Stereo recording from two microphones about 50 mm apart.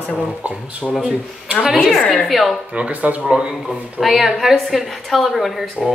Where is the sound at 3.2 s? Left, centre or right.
Centre.